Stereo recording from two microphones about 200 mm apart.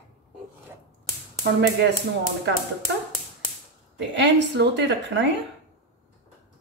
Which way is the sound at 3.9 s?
60° right (ahead or behind).